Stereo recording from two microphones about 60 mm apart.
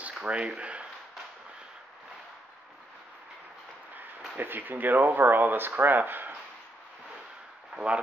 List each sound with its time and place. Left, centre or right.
0.1 s speech: centre
4.4 s speech: right
7.7 s speech: centre